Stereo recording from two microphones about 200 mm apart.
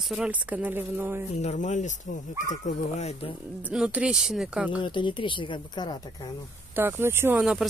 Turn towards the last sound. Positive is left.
turn(degrees=-5)  # may be behind; listen again after turning